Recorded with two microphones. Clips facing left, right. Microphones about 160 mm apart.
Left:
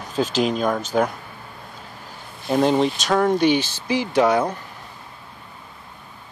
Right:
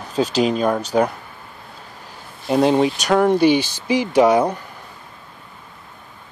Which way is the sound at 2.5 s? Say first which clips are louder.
Right 2 dB; 5° right (ahead or behind).